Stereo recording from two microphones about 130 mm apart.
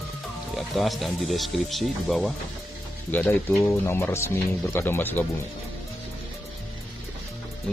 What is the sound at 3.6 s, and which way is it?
Speech, 20° left (ahead or behind).